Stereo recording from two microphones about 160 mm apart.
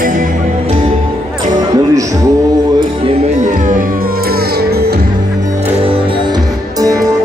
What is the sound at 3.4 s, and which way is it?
Music, 55° right (ahead or behind).